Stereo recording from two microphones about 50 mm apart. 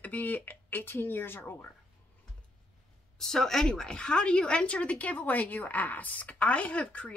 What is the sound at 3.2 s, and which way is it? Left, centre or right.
Speech, centre.